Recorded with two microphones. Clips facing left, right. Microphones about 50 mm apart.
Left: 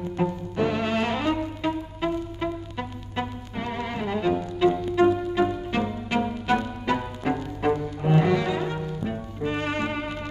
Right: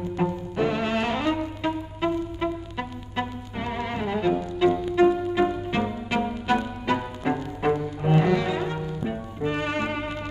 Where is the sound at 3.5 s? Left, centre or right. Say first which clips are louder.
Right 1 dB; centre.